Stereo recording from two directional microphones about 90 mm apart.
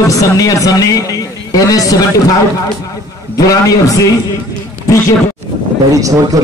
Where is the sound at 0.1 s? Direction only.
40° left (ahead or behind).